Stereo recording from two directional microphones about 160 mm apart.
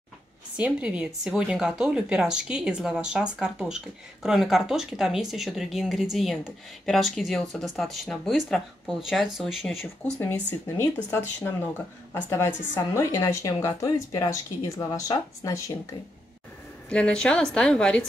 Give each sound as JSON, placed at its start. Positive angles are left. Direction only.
{"t": 0.6, "sound": "speech", "side_deg": -10}
{"t": 10.8, "sound": "speech", "side_deg": 15}
{"t": 16.9, "sound": "speech", "side_deg": 5}